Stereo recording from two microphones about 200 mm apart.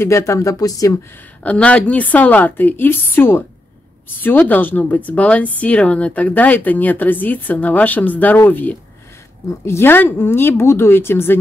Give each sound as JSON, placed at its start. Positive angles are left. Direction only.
{"t": 0.0, "sound": "speech", "side_deg": 15}
{"t": 1.4, "sound": "speech", "side_deg": 5}